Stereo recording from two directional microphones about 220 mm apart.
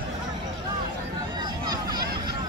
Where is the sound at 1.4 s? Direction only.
20° right (ahead or behind).